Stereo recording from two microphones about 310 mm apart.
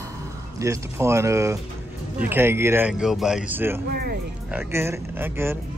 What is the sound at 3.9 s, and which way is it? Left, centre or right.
Speech, right.